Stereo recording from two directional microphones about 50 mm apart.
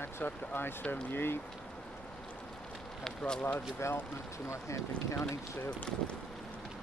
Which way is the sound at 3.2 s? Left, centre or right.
Left.